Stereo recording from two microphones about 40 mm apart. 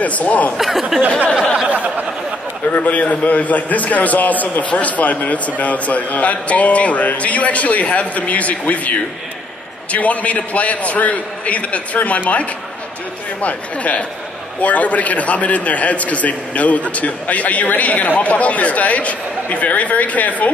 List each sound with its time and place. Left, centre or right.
0.0 s a man's voice: left
0.6 s speech: centre
2.7 s a man's voice: left